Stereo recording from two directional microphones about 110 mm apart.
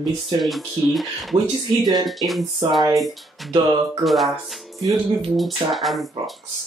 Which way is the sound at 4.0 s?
Centre (ahead or behind).